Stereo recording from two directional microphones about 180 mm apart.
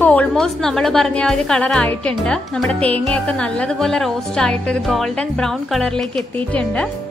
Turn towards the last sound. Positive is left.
turn(degrees=5)  # may be behind; listen again after turning